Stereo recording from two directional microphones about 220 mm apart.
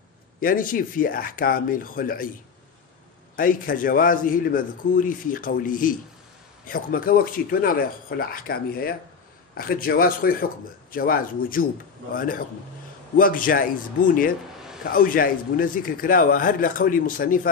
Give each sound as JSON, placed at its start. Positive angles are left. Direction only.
{"t": 0.4, "sound": "a man's voice", "side_deg": 40}
{"t": 3.3, "sound": "a man's voice", "side_deg": 40}